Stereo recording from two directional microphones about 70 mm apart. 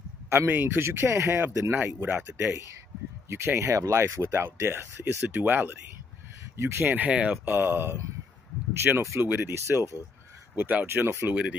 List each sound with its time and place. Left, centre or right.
0.3 s speech: right
5.3 s speech: right
6.5 s speech: right
6.9 s speech: right
7.5 s speech: right
10.5 s speech: right